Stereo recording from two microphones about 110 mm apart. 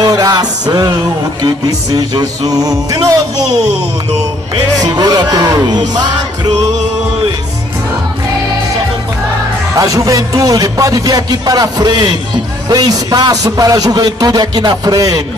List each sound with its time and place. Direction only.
0.0 s music: 35° right (ahead or behind)
1.4 s a man's voice: 35° right (ahead or behind)
4.7 s a man's voice: 40° right (ahead or behind)
9.8 s a man's voice: 30° right (ahead or behind)